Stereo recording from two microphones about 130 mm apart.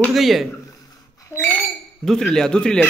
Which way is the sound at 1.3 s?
15° left (ahead or behind).